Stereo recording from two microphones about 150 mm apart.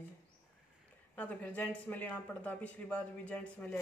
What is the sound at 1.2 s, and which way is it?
Speech, 10° left (ahead or behind).